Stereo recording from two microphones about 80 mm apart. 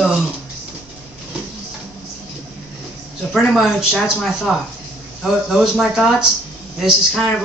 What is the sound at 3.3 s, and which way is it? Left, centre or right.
Speech, centre.